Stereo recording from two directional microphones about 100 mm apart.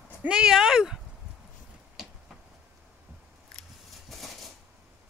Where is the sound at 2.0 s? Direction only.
5° right (ahead or behind).